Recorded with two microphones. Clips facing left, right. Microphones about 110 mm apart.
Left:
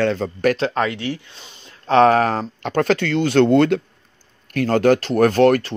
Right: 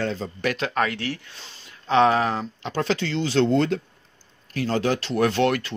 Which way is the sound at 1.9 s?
45° left (ahead or behind).